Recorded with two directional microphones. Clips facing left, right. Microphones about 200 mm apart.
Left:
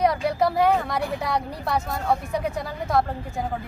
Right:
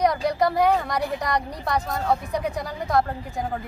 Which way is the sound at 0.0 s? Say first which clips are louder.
Even; 5° left (ahead or behind).